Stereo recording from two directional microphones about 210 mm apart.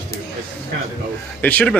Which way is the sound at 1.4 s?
5° left (ahead or behind).